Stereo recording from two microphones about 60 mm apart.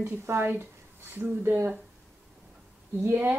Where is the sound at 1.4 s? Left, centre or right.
Right.